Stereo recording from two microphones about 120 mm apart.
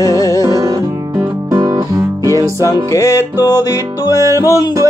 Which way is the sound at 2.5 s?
25° left (ahead or behind).